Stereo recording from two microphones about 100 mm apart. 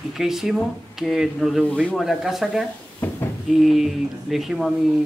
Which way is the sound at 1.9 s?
Centre (ahead or behind).